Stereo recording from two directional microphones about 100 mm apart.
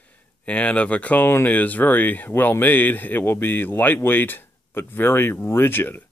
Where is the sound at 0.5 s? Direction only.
10° left (ahead or behind).